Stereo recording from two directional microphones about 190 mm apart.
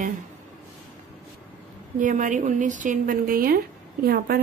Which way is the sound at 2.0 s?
45° right (ahead or behind).